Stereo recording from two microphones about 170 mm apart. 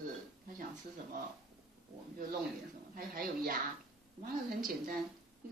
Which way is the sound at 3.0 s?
60° right (ahead or behind).